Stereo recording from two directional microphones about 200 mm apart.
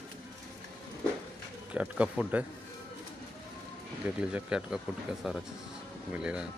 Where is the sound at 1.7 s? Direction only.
5° right (ahead or behind).